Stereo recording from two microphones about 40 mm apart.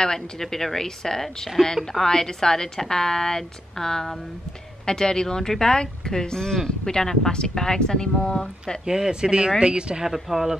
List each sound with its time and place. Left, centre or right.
0.0 s a woman's voice: centre
8.8 s speech: centre
10.0 s speech: centre